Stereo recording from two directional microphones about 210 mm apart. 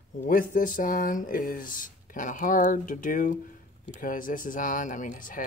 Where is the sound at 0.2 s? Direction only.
40° left (ahead or behind).